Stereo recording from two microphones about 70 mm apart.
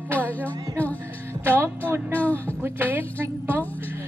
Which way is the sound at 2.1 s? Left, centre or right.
Left.